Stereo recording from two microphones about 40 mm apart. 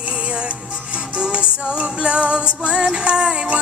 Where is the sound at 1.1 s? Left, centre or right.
Right.